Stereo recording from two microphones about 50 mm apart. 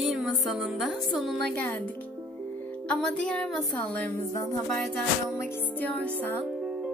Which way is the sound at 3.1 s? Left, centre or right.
Left.